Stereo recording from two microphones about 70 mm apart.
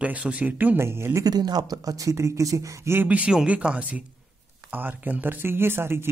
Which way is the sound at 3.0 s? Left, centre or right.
Right.